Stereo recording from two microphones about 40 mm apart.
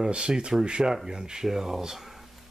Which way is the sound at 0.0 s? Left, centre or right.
Centre.